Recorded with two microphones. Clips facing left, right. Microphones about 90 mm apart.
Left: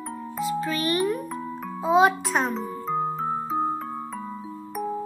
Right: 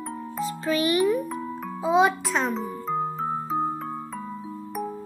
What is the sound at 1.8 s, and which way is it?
Music, centre (ahead or behind).